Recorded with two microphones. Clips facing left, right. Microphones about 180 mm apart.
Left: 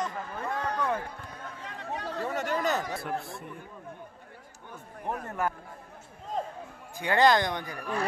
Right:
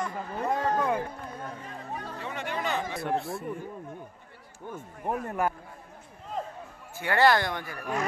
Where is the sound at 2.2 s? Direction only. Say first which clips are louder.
Left 4 dB; 45° left (ahead or behind).